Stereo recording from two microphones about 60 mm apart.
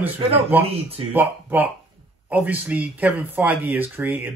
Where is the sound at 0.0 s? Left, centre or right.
Right.